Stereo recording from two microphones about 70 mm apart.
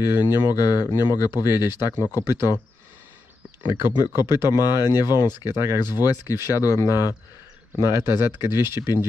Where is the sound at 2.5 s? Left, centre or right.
Left.